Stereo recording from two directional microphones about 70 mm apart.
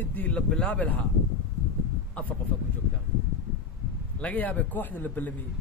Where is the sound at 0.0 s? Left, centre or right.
Left.